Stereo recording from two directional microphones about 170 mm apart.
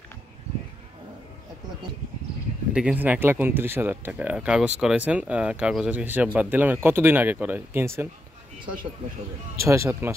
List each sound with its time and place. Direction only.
2.7 s speech: 5° right (ahead or behind)
9.6 s speech: 15° right (ahead or behind)